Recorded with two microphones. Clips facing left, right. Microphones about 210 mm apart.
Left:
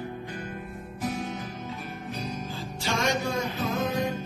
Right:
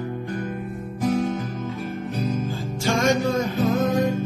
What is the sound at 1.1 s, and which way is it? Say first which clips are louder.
Music: right 14 dB; 55° right (ahead or behind).